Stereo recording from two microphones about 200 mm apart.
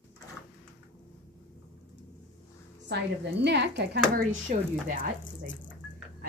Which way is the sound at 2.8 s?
60° right (ahead or behind).